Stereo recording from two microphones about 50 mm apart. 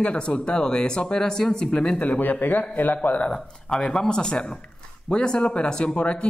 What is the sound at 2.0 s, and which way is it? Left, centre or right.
Speech, left.